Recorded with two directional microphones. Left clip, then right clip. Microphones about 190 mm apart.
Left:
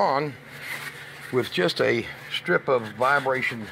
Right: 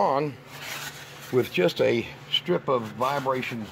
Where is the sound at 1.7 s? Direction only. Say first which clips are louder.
Left 1 dB; 10° left (ahead or behind).